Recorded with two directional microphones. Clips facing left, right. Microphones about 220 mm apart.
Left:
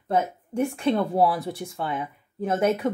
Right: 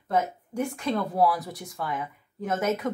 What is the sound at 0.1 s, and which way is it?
Speech, 25° left (ahead or behind).